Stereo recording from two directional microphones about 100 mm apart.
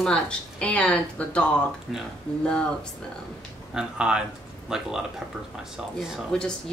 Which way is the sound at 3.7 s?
10° right (ahead or behind).